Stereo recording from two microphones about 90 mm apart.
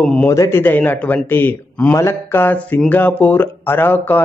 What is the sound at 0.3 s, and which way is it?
Speech, 30° left (ahead or behind).